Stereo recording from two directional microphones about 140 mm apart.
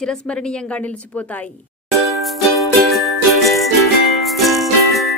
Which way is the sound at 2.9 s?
Centre (ahead or behind).